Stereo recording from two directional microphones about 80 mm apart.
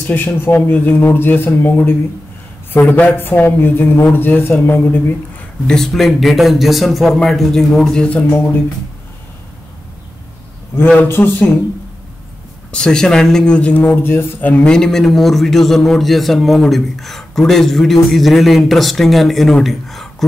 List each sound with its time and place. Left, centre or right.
0.0 s speech: left
5.7 s a man's voice: centre
11.1 s speech: left
12.7 s speech: centre
14.6 s a man's voice: centre